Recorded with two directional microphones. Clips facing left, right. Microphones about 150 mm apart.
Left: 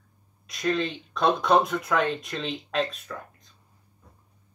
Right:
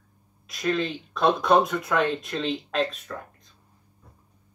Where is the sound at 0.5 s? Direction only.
Centre (ahead or behind).